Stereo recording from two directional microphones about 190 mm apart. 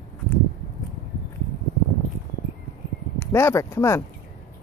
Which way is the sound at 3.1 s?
15° left (ahead or behind).